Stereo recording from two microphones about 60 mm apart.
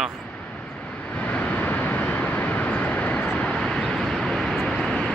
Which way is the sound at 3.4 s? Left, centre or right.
Centre.